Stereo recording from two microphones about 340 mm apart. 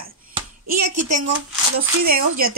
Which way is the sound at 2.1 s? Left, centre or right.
Right.